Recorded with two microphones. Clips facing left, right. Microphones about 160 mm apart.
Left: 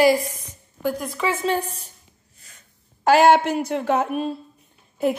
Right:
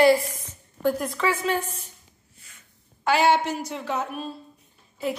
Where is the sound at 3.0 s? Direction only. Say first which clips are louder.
Left 6 dB; 50° left (ahead or behind).